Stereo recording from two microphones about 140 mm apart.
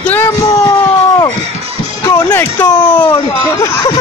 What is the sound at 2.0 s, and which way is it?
Music, 20° left (ahead or behind).